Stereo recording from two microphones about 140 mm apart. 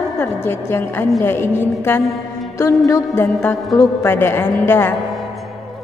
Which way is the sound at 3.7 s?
20° left (ahead or behind).